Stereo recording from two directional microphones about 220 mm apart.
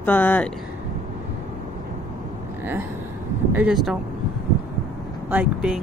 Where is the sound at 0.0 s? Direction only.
10° left (ahead or behind).